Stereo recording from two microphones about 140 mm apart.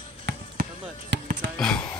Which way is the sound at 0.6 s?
90° right.